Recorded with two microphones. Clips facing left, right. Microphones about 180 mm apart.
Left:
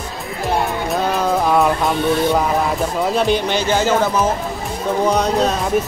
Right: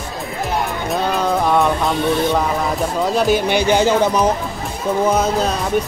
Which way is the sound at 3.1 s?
5° right (ahead or behind).